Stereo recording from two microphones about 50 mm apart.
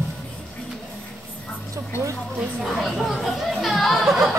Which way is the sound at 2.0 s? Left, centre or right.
Right.